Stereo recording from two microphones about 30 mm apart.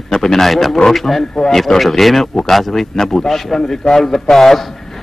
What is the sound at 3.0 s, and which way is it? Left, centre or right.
A man's voice, centre.